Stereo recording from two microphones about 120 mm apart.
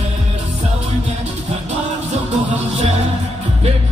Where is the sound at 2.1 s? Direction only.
75° right (ahead or behind).